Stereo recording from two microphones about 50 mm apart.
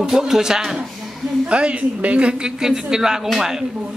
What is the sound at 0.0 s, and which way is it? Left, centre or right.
Speech, centre.